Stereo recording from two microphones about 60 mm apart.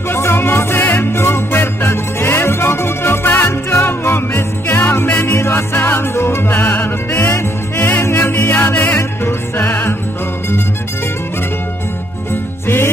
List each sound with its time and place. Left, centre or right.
0.1 s music: left
12.6 s jingle bell: left